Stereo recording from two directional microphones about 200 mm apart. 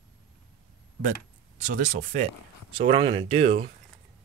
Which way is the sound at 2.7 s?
30° right (ahead or behind).